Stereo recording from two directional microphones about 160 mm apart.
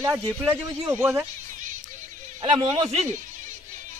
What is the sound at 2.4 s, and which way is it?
Speech, 35° right (ahead or behind).